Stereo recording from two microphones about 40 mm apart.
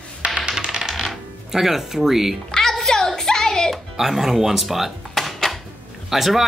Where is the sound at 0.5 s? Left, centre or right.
Centre.